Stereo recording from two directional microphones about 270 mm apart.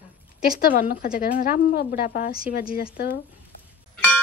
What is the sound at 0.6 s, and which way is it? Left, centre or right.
Speech, left.